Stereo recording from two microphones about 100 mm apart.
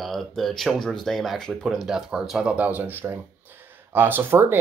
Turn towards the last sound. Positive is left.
turn(degrees=-20)  # may be behind; listen again after turning